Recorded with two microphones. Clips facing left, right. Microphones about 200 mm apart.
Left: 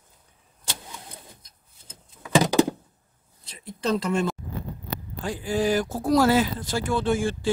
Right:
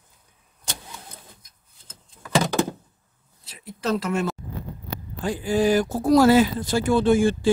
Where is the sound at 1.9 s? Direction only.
15° left (ahead or behind).